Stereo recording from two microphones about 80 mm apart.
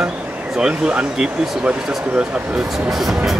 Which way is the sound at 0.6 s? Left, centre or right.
Centre.